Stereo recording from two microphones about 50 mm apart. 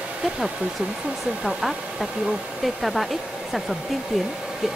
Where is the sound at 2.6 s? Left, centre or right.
Centre.